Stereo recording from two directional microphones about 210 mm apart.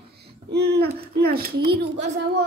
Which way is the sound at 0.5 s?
50° right (ahead or behind).